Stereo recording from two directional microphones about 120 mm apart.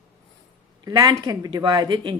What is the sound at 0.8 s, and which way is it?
Speech, 35° right (ahead or behind).